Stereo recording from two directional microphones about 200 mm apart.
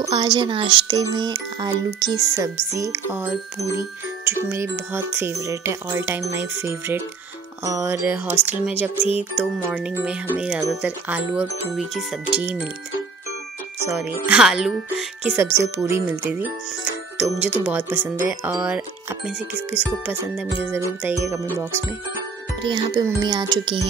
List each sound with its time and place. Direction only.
0.0 s speech: 25° right (ahead or behind)
3.7 s music: 10° right (ahead or behind)
9.4 s speech: 5° right (ahead or behind)
10.7 s music: 5° right (ahead or behind)
13.8 s music: 10° right (ahead or behind)
19.8 s speech: 10° left (ahead or behind)
20.1 s music: 10° right (ahead or behind)
22.6 s speech: 25° right (ahead or behind)